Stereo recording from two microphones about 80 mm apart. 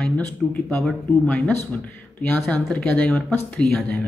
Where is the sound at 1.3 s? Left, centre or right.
Centre.